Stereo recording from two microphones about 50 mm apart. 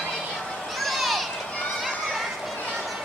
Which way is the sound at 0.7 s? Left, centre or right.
Centre.